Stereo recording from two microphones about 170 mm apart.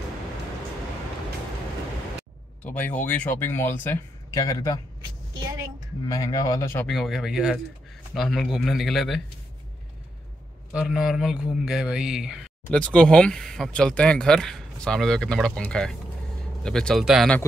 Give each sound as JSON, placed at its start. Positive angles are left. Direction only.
{"t": 2.6, "sound": "speech", "side_deg": 10}
{"t": 6.0, "sound": "speech", "side_deg": 20}
{"t": 6.9, "sound": "speech", "side_deg": 0}
{"t": 10.7, "sound": "speech", "side_deg": -5}